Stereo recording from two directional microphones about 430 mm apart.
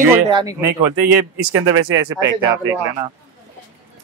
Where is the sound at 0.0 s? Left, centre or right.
Centre.